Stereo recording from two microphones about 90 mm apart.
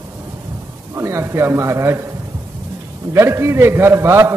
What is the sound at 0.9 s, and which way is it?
A man's voice, 30° right (ahead or behind).